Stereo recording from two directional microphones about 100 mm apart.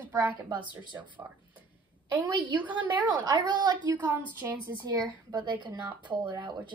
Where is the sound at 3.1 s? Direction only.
45° right (ahead or behind).